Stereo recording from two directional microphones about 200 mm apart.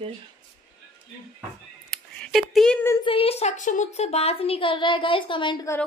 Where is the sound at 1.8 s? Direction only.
Centre (ahead or behind).